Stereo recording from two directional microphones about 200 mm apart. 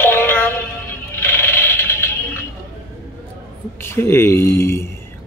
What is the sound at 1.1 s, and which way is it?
Music, 10° left (ahead or behind).